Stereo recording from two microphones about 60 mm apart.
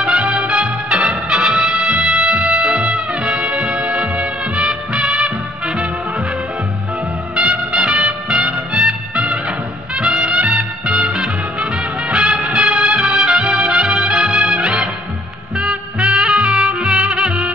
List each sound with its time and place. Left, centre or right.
0.0 s music: centre
7.3 s music: centre
9.1 s music: centre
11.1 s music: centre